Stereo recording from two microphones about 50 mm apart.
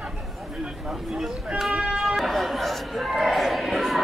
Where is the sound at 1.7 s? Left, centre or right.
Centre.